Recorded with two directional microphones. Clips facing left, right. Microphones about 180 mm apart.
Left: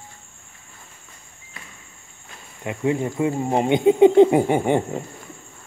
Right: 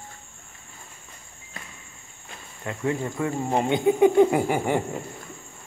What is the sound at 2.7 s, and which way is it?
Speech, 20° left (ahead or behind).